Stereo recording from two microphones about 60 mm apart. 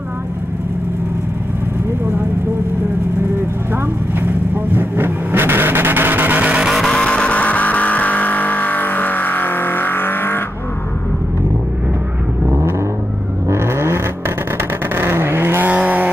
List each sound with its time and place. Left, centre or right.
3.7 s vehicle: right
6.9 s vehicle: centre; by 10.4 s left
13.5 s vehicle: right